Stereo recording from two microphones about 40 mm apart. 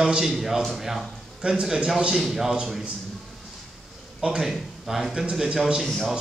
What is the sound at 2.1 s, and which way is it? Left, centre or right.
Speech, centre.